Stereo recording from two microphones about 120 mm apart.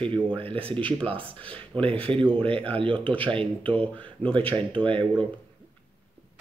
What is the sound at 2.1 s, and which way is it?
Speech, 45° right (ahead or behind).